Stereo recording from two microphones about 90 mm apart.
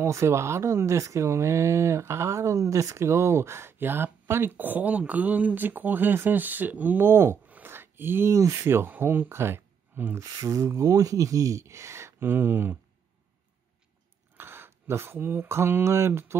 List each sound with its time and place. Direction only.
0.0 s speech: 30° right (ahead or behind)
10.2 s speech: 35° right (ahead or behind)
14.3 s speech: 25° right (ahead or behind)